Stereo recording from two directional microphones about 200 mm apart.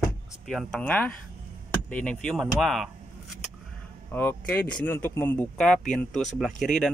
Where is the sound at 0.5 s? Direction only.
Centre (ahead or behind).